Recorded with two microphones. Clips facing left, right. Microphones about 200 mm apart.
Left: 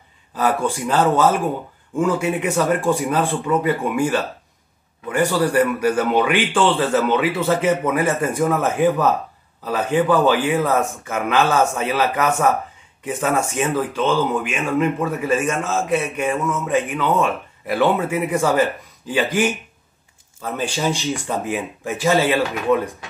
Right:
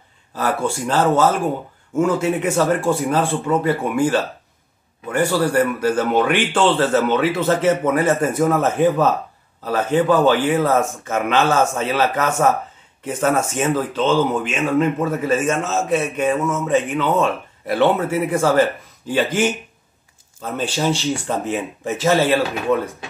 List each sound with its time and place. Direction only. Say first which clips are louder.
0.5 s a man's voice: even; 15° left (ahead or behind)
5.8 s a man's voice: even; 15° left (ahead or behind)